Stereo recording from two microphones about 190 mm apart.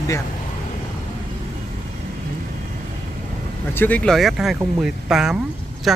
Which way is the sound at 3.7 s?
10° left (ahead or behind).